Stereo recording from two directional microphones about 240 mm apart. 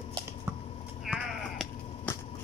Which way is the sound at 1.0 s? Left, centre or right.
Centre.